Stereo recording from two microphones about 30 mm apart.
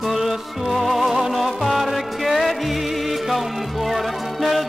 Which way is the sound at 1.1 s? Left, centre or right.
Centre.